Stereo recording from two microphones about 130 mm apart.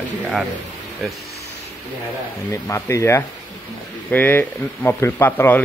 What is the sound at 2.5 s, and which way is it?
Speech, 20° left (ahead or behind).